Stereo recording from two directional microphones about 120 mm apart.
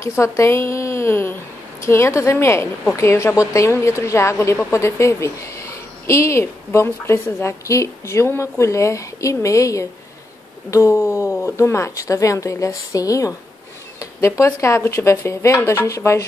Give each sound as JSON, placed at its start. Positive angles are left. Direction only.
{"t": 0.0, "sound": "a woman's voice", "side_deg": 25}